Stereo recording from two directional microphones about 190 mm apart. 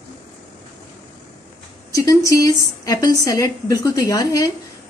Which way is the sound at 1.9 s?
15° left (ahead or behind).